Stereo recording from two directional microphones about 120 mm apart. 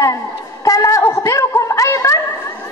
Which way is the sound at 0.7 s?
25° left (ahead or behind).